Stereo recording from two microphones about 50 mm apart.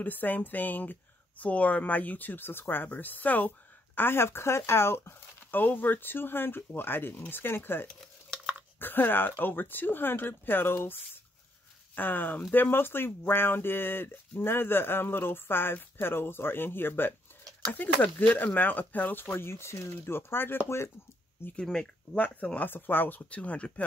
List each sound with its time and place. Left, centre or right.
0.0 s speech: left
5.5 s speech: left
17.7 s speech: left
19.3 s speech: left
21.5 s speech: centre
22.2 s speech: left
22.7 s speech: left
23.3 s speech: left